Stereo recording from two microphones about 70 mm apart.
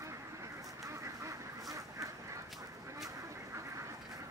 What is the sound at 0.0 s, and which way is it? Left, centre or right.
Duck, right.